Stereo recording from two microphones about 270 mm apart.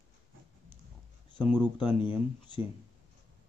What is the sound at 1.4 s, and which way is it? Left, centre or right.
Speech, centre.